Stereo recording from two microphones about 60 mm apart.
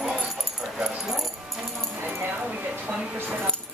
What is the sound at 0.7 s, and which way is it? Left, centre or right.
Dog, centre.